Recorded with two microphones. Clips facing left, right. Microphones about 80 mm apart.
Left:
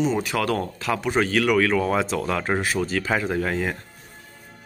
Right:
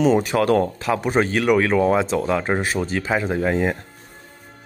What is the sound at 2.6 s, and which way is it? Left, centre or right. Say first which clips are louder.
Speech: right 1 dB; right.